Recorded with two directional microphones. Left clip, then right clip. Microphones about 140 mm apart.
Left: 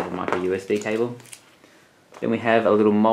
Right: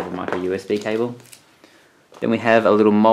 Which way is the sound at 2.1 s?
35° right (ahead or behind).